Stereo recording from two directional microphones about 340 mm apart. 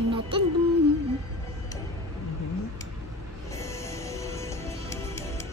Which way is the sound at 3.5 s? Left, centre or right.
Centre.